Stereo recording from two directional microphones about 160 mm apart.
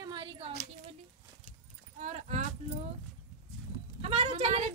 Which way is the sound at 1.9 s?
45° right (ahead or behind).